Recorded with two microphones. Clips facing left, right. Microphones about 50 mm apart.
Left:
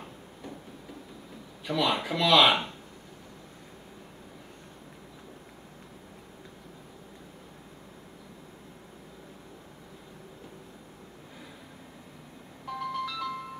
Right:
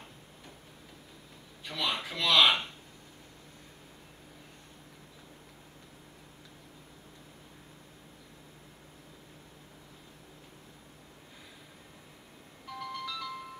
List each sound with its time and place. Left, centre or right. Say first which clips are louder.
1.6 s speech: left 7 dB; centre
12.6 s music: left 6 dB; centre